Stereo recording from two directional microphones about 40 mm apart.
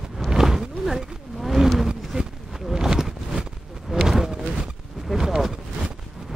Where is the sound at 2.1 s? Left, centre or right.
Right.